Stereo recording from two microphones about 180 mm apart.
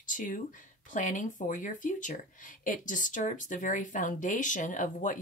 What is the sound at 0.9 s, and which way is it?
Speech, 45° left (ahead or behind).